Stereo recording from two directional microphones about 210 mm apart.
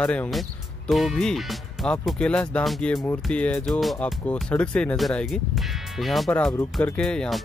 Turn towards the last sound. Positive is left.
turn(degrees=5)  # may be behind; listen again after turning